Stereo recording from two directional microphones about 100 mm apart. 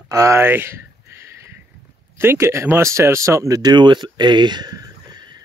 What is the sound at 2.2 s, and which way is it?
Speech, 25° right (ahead or behind).